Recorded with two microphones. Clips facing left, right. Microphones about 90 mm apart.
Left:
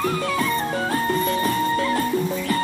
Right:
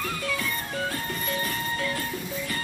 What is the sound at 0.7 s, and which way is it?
Music, 45° left (ahead or behind).